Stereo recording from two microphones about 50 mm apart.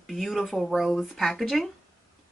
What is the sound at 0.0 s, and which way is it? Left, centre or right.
Speech, centre.